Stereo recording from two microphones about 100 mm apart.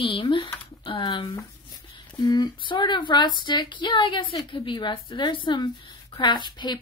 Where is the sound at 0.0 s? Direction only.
60° left (ahead or behind).